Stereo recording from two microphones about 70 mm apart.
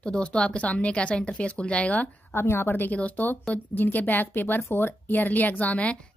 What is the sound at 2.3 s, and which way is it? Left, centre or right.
A woman's voice, left.